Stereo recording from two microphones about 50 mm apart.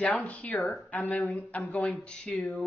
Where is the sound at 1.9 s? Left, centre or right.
Centre.